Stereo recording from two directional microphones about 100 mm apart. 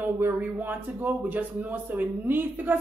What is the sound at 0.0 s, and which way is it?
Speech, 20° right (ahead or behind).